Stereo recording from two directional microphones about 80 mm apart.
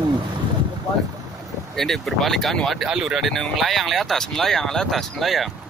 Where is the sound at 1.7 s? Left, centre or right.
Centre.